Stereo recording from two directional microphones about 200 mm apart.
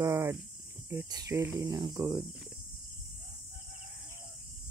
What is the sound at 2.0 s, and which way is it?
Speech, 10° right (ahead or behind).